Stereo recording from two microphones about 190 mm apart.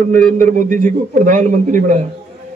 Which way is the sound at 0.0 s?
45° right (ahead or behind).